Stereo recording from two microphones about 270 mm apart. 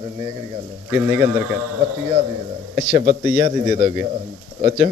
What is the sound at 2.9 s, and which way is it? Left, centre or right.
A man's voice, centre.